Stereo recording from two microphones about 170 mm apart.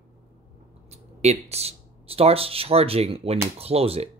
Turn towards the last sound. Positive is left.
turn(degrees=-35)  # may be behind; listen again after turning